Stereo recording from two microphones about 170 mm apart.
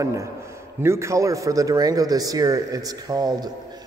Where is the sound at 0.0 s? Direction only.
20° right (ahead or behind).